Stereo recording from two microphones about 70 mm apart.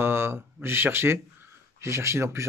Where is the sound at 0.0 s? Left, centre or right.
Right.